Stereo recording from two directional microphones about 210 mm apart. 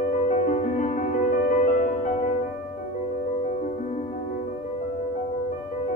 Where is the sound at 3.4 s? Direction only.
35° left (ahead or behind).